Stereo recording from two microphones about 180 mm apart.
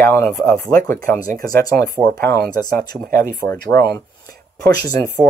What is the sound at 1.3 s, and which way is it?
Speech, 50° right (ahead or behind).